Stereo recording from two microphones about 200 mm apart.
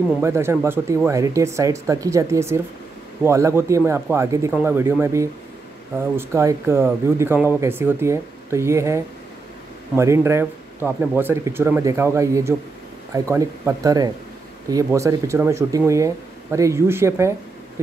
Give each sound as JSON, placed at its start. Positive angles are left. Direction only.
{"t": 0.2, "sound": "speech", "side_deg": -15}